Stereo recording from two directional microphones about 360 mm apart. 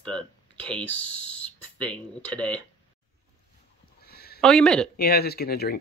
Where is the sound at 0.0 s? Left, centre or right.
Centre.